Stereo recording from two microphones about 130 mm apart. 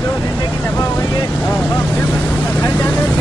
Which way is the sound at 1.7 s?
15° left (ahead or behind).